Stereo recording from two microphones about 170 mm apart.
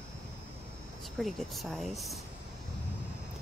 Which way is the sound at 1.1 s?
Centre (ahead or behind).